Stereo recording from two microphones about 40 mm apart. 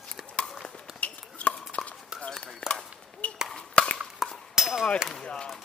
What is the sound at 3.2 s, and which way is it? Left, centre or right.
Chop, left.